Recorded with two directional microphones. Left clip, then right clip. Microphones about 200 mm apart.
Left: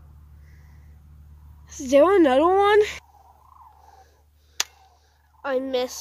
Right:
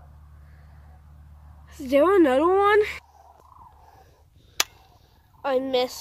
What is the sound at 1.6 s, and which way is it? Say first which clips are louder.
Speech: left 3 dB; 25° left (ahead or behind).